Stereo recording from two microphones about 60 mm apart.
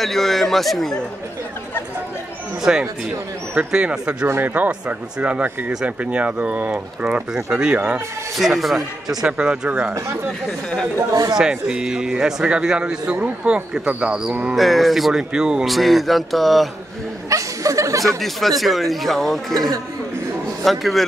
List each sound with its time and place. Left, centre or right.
0.0 s speech: centre
2.6 s a man's voice: centre
8.4 s a man's voice: centre
11.3 s a man's voice: centre
14.5 s speech: centre
15.6 s speech: centre
17.3 s chuckle: right
18.0 s speech: centre
20.6 s speech: centre